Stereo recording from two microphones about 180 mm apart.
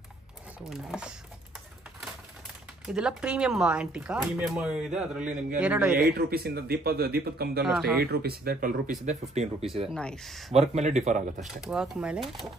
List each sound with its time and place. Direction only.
0.7 s speech: 5° right (ahead or behind)
2.9 s a man's voice: 5° right (ahead or behind)
6.1 s speech: 60° right (ahead or behind)
7.6 s speech: centre (ahead or behind)
8.0 s speech: 60° right (ahead or behind); by 9.7 s 35° right (ahead or behind)
9.8 s speech: 5° left (ahead or behind)
10.5 s speech: 35° right (ahead or behind)
11.3 s speech: 5° right (ahead or behind)